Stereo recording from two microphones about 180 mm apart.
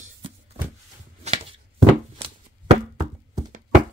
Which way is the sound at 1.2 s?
30° right (ahead or behind).